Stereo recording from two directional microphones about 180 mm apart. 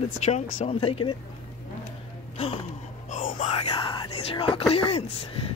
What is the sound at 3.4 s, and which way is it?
Whispering, 35° left (ahead or behind).